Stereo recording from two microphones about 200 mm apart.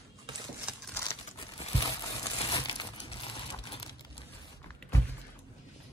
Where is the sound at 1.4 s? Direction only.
30° left (ahead or behind).